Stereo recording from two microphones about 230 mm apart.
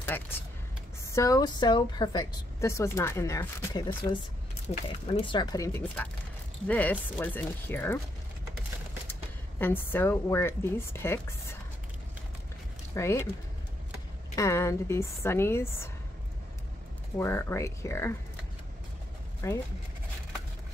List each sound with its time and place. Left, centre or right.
0.0 s a woman's voice: centre
9.6 s a woman's voice: centre
12.9 s speech: centre
14.3 s a woman's voice: centre
17.2 s a woman's voice: centre
19.4 s a woman's voice: centre